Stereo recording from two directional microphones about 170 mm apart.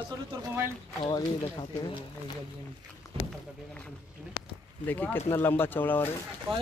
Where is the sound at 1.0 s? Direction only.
25° left (ahead or behind).